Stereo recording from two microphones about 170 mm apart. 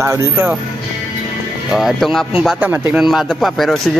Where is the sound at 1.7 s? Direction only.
Centre (ahead or behind).